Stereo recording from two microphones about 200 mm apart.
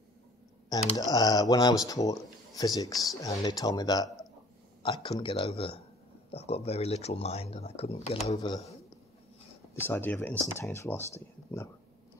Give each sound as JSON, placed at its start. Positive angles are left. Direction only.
{"t": 0.9, "sound": "speech", "side_deg": 20}
{"t": 9.8, "sound": "speech", "side_deg": 10}